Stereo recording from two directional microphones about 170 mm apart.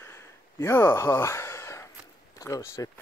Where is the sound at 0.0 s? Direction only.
15° left (ahead or behind).